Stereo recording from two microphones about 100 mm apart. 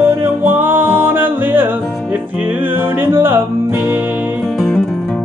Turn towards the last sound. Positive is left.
turn(degrees=-20)  # may be behind; listen again after turning